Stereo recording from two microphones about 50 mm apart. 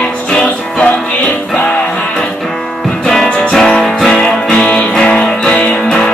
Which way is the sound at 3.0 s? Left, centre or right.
Centre.